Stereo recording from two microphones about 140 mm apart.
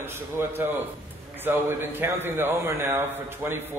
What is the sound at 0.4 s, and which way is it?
A man's voice, 15° right (ahead or behind).